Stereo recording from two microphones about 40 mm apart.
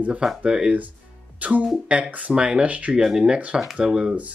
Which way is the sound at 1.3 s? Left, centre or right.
Right.